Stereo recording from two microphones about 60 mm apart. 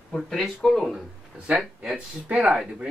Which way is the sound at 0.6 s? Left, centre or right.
Centre.